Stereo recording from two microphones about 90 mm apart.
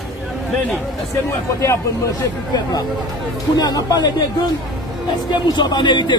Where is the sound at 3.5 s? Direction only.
45° left (ahead or behind).